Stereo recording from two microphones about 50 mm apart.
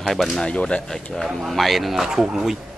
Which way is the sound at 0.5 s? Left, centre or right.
Left.